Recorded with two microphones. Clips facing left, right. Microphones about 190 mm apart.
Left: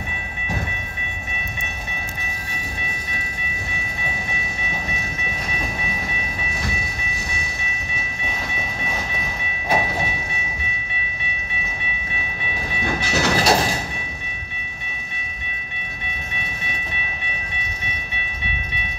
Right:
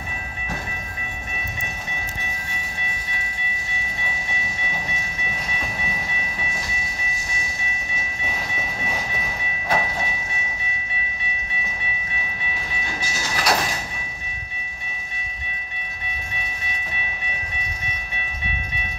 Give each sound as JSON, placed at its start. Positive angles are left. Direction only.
{"t": 12.8, "sound": "train", "side_deg": 65}
{"t": 13.4, "sound": "sliding door", "side_deg": 30}